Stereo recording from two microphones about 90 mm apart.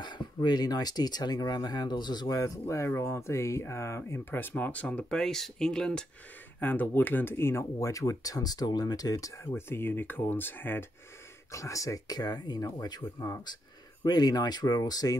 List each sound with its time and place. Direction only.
0.0 s speech: 55° left (ahead or behind); by 6.0 s 10° left (ahead or behind)
6.6 s speech: 20° left (ahead or behind); by 9.5 s 35° left (ahead or behind)
9.5 s speech: 25° left (ahead or behind)
11.5 s speech: 35° left (ahead or behind)